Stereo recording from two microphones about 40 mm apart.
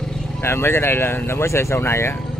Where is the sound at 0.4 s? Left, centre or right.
Left.